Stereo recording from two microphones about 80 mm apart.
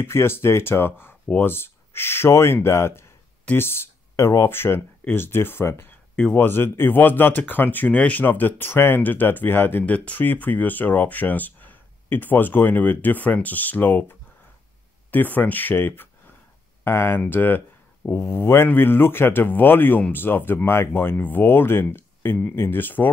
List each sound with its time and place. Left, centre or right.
0.0 s speech: left